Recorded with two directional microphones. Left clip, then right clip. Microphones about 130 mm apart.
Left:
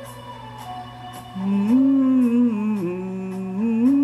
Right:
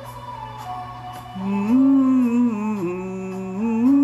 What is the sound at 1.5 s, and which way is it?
Humming, 20° left (ahead or behind).